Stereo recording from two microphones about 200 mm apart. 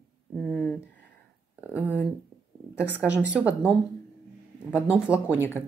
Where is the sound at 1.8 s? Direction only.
10° left (ahead or behind); by 5.5 s 5° right (ahead or behind).